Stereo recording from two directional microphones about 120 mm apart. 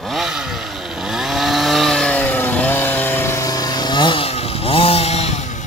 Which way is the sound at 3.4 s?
30° left (ahead or behind).